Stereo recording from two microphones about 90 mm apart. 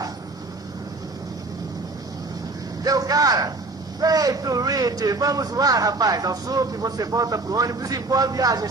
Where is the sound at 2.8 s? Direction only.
45° right (ahead or behind).